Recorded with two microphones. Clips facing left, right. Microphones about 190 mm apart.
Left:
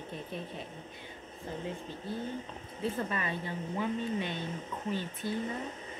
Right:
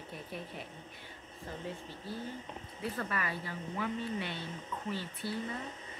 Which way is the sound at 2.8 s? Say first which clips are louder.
Left 3 dB; 25° left (ahead or behind).